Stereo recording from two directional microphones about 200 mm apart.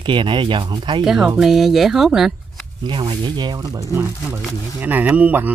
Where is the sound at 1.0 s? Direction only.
Centre (ahead or behind).